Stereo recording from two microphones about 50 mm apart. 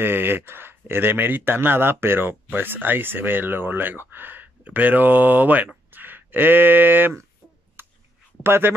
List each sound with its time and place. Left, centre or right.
0.0 s speech: right
7.8 s a sound: right
8.4 s a man's voice: right